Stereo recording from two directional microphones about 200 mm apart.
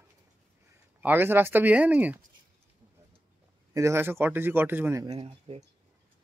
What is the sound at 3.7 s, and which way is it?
Speech, 15° right (ahead or behind).